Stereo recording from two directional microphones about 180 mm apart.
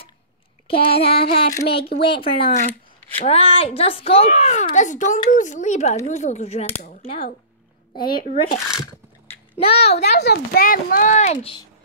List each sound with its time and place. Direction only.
0.7 s a sound: 30° left (ahead or behind)
1.7 s a woman's voice: 30° left (ahead or behind)
8.0 s speech: 55° left (ahead or behind)
9.6 s a woman's voice: 35° left (ahead or behind)
10.0 s speech: 65° left (ahead or behind); by 11.6 s 35° left (ahead or behind)